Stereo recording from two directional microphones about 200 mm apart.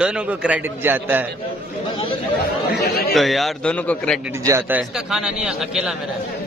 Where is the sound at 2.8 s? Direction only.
50° left (ahead or behind).